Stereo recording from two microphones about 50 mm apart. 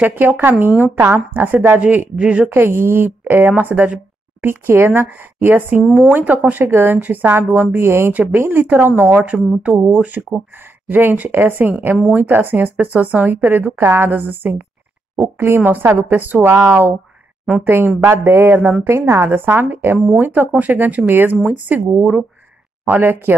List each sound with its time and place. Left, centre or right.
0.0 s speech: right
2.1 s a woman's voice: right
2.5 s speech: right
4.4 s speech: right
7.5 s speech: right
8.1 s speech: right
9.0 s speech: right
17.6 s speech: right
18.9 s speech: right
19.3 s speech: right
22.8 s speech: right